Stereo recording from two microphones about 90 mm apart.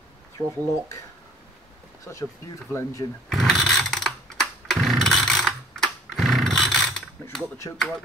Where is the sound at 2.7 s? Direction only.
35° left (ahead or behind).